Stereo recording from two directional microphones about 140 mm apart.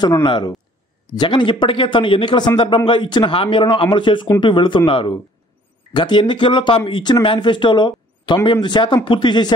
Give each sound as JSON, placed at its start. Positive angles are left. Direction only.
{"t": 0.0, "sound": "speech", "side_deg": 30}